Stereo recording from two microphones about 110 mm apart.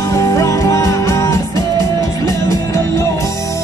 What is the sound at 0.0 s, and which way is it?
Music, 30° left (ahead or behind).